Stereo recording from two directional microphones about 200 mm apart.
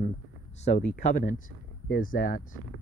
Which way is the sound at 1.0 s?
40° left (ahead or behind).